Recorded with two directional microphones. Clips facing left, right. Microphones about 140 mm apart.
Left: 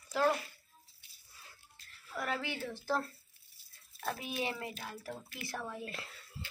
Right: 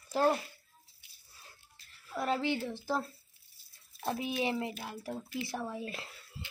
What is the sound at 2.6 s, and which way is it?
A woman's voice, 15° right (ahead or behind).